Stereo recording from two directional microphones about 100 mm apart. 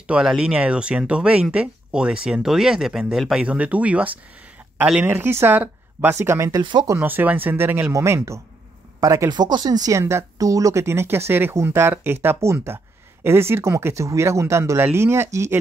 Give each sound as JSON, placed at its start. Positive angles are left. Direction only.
{"t": 0.0, "sound": "speech", "side_deg": -10}
{"t": 6.6, "sound": "speech", "side_deg": -50}
{"t": 7.0, "sound": "speech", "side_deg": -20}
{"t": 9.3, "sound": "speech", "side_deg": -45}